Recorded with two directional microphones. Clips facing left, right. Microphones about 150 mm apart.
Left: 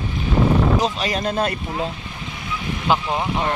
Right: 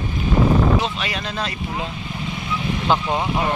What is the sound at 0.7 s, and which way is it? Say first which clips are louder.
Speech: left 2 dB; 40° left (ahead or behind).